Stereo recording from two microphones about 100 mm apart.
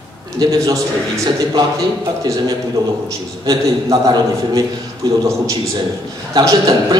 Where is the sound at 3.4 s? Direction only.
40° right (ahead or behind).